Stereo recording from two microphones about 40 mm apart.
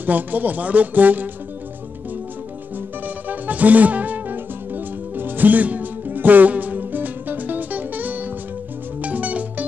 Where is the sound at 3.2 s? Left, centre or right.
Right.